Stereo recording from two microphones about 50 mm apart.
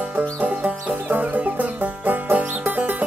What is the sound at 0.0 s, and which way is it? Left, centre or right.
Music, right.